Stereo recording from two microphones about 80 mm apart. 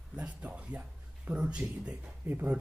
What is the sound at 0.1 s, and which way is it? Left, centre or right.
Speech, centre.